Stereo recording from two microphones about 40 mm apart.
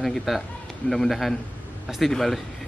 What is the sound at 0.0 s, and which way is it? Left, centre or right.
A man's voice, centre.